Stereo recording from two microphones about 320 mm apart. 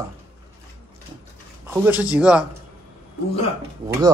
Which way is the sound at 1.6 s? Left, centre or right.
Centre.